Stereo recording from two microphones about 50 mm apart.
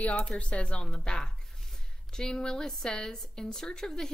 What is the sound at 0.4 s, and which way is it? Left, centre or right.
Speech, left.